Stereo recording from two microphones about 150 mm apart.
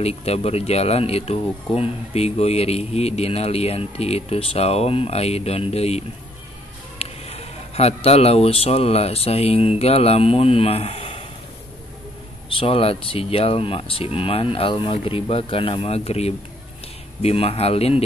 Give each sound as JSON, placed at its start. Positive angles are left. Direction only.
{"t": 0.0, "sound": "speech", "side_deg": 45}
{"t": 12.4, "sound": "speech", "side_deg": 35}